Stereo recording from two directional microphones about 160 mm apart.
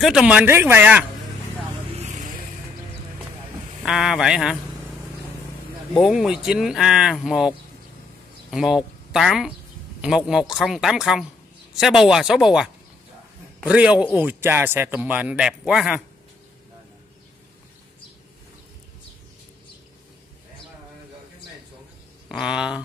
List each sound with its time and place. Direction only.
0.0 s speech: 5° right (ahead or behind)
2.0 s vehicle: 50° right (ahead or behind)
3.8 s speech: 5° right (ahead or behind)
5.9 s speech: centre (ahead or behind)
13.7 s speech: 5° right (ahead or behind)
22.3 s speech: 5° right (ahead or behind)